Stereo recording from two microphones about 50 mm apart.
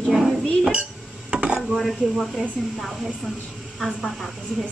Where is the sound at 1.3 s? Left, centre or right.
Centre.